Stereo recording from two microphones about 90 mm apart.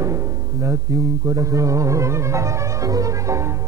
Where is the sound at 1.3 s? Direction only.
35° right (ahead or behind).